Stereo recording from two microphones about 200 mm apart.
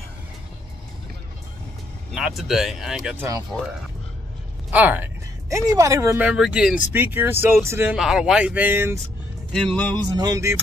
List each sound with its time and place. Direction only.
2.1 s speech: centre (ahead or behind)
4.6 s speech: 10° right (ahead or behind)
9.5 s speech: 5° left (ahead or behind)
10.1 s speech: 15° right (ahead or behind)